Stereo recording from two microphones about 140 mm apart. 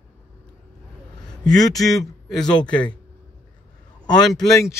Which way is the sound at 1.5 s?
25° left (ahead or behind).